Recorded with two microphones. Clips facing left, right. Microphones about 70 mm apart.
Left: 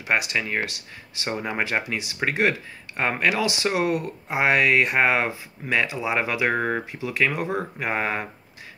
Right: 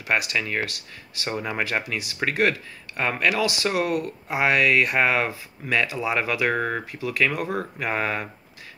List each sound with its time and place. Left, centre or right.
0.0 s speech: left